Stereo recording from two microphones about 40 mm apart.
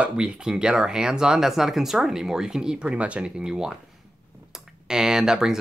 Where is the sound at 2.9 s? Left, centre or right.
Right.